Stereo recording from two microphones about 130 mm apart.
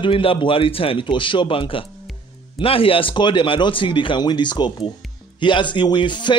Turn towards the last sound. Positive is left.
turn(degrees=35)  # may be behind; listen again after turning